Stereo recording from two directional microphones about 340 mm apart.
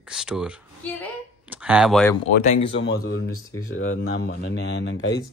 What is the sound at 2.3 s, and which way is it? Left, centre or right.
Speech, centre.